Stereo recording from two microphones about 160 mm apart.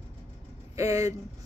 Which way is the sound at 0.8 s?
20° right (ahead or behind).